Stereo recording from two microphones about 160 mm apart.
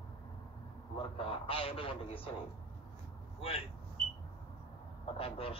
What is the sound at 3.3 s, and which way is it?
Speech, 35° left (ahead or behind).